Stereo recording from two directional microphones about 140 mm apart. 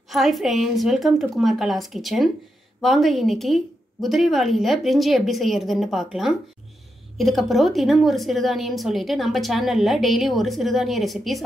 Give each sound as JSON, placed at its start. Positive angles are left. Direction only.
{"t": 0.1, "sound": "a woman's voice", "side_deg": 0}